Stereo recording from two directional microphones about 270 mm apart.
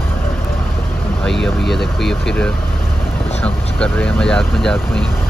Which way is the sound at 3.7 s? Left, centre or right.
Centre.